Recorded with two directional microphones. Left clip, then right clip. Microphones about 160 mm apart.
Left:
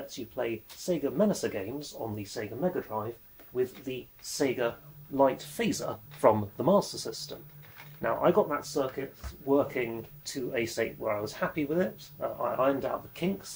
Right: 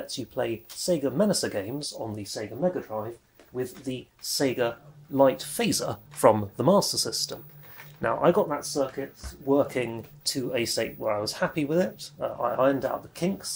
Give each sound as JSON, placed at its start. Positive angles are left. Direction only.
{"t": 0.0, "sound": "speech", "side_deg": -40}
{"t": 2.3, "sound": "speech", "side_deg": -25}